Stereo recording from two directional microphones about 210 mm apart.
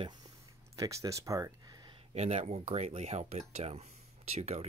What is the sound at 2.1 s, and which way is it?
Speech, 30° right (ahead or behind).